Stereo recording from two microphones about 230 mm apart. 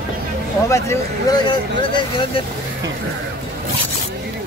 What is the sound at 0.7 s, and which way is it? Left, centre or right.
Speech, centre.